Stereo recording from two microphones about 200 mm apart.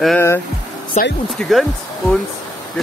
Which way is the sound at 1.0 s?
35° left (ahead or behind).